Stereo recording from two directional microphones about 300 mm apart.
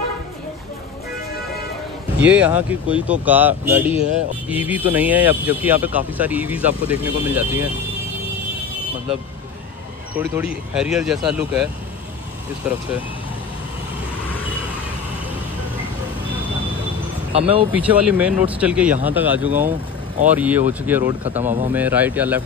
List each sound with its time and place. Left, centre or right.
2.2 s speech: centre
10.1 s speech: centre
17.3 s speech: centre
17.7 s speech: centre